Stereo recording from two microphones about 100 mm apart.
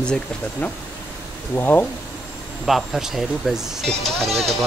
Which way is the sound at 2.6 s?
Centre (ahead or behind).